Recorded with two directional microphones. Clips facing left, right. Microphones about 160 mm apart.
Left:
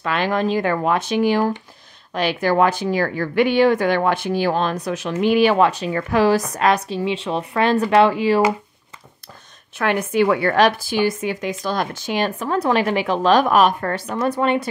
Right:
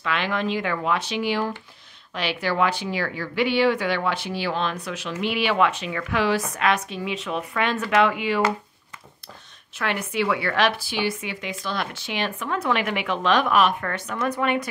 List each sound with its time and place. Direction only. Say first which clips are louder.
0.0 s a woman's voice: left 5 dB; 40° left (ahead or behind)
9.8 s a woman's voice: left 7 dB; 45° left (ahead or behind); by 14.7 s 30° left (ahead or behind)